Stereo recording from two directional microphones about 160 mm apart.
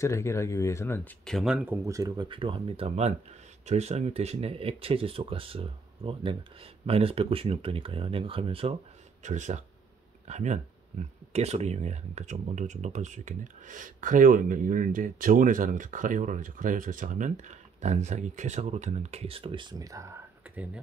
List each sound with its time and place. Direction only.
0.0 s speech: 20° left (ahead or behind); by 1.8 s 5° right (ahead or behind)
1.9 s speech: 20° right (ahead or behind)
9.2 s speech: 50° right (ahead or behind); by 20.8 s 10° right (ahead or behind)